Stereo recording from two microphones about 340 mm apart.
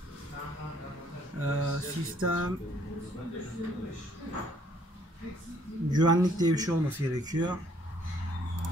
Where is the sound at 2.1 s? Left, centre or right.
Right.